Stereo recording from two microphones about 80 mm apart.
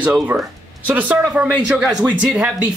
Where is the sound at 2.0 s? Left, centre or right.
Centre.